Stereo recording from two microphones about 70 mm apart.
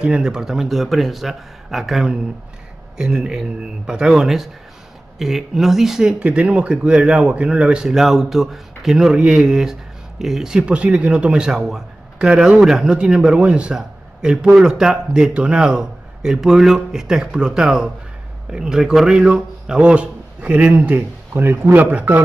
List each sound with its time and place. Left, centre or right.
0.0 s a man's voice: centre
21.3 s speech: right
21.7 s speech: right